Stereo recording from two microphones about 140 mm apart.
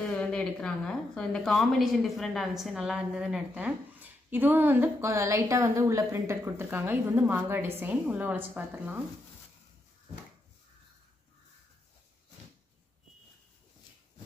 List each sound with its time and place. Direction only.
0.1 s a woman's voice: 5° left (ahead or behind); by 9.0 s 10° right (ahead or behind)